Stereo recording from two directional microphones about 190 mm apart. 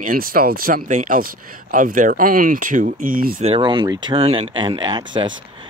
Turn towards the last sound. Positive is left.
turn(degrees=-25)  # may be behind; listen again after turning